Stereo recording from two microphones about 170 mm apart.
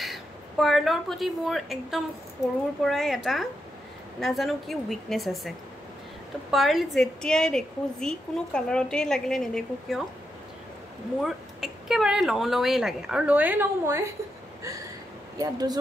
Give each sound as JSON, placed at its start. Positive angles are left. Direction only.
{"t": 0.0, "sound": "a woman's voice", "side_deg": 0}
{"t": 6.5, "sound": "a woman's voice", "side_deg": 0}
{"t": 11.1, "sound": "a woman's voice", "side_deg": 0}
{"t": 15.3, "sound": "speech", "side_deg": -20}